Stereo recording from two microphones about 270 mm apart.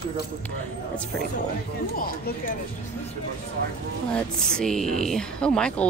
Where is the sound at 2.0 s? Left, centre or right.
Left.